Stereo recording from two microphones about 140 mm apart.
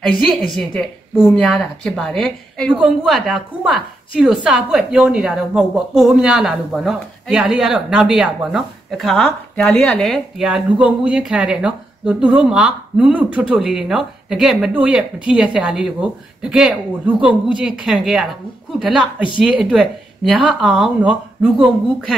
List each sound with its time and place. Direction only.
0.1 s a woman's voice: 5° left (ahead or behind)